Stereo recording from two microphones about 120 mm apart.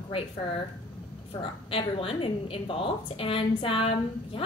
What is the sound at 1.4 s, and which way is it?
A woman's voice, 50° left (ahead or behind).